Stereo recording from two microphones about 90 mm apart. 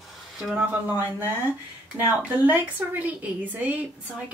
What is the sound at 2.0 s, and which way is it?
A woman's voice, 20° right (ahead or behind).